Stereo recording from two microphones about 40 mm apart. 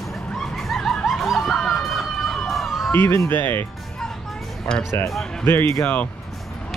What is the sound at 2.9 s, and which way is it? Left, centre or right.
Speech, left.